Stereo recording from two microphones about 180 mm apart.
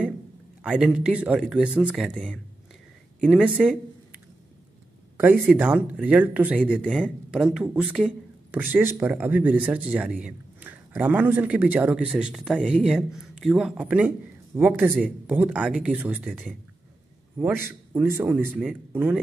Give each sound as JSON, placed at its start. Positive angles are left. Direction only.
{"t": 0.7, "sound": "speech", "side_deg": -5}
{"t": 3.2, "sound": "speech", "side_deg": -5}
{"t": 5.5, "sound": "a man's voice", "side_deg": -5}
{"t": 17.9, "sound": "a man's voice", "side_deg": -10}